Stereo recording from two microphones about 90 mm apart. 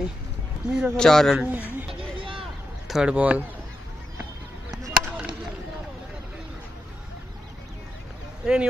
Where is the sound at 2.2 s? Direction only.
80° right.